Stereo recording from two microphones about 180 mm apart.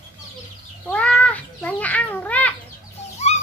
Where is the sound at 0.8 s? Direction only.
5° left (ahead or behind).